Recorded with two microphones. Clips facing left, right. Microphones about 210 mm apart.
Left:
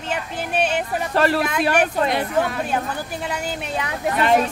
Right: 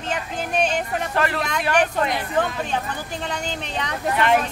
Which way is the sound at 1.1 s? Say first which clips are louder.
Left 6 dB; 35° left (ahead or behind).